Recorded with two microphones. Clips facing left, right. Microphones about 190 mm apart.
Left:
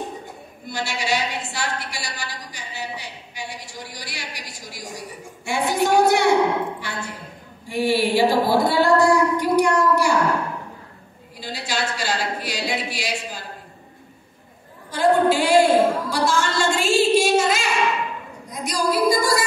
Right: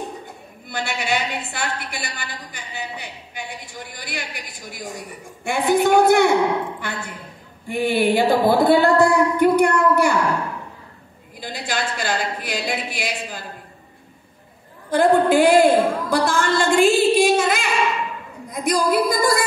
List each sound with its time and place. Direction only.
0.7 s a woman's voice: 55° right (ahead or behind)
11.3 s a woman's voice: 50° right (ahead or behind)
14.9 s a woman's voice: 55° right (ahead or behind)
15.6 s a sound: 55° right (ahead or behind)
18.5 s a woman's voice: 55° right (ahead or behind)